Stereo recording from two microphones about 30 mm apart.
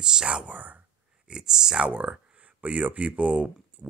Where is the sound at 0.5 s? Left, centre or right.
Right.